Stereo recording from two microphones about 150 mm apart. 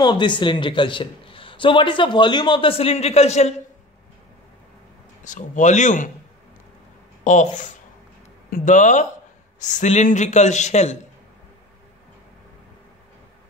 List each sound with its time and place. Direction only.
0.0 s a man's voice: 30° left (ahead or behind); by 3.5 s 45° left (ahead or behind)
5.2 s speech: 55° left (ahead or behind)
7.2 s a man's voice: 55° left (ahead or behind)